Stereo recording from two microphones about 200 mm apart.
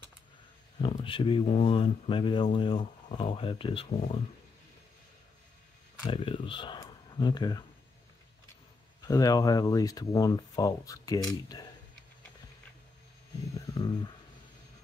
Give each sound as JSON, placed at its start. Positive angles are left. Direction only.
{"t": 0.7, "sound": "speech", "side_deg": 25}
{"t": 6.0, "sound": "speech", "side_deg": 25}
{"t": 9.0, "sound": "speech", "side_deg": 20}
{"t": 13.7, "sound": "a sound", "side_deg": 20}